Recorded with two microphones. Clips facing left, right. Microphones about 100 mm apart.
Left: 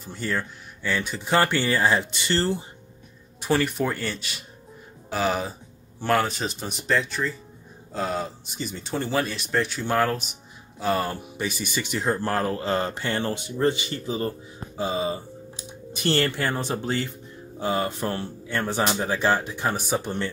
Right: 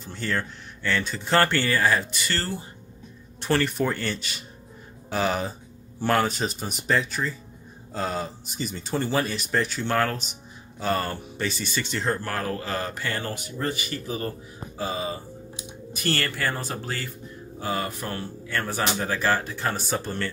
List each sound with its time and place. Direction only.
0.0 s speech: 5° left (ahead or behind); by 2.6 s 25° left (ahead or behind)
3.3 s speech: 5° left (ahead or behind)
12.2 s speech: 30° left (ahead or behind)